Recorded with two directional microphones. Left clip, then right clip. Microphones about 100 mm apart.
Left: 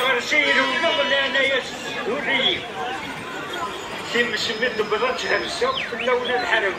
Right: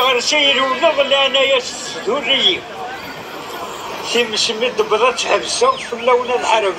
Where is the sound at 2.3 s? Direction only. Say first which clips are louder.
Right 6 dB; 35° left (ahead or behind).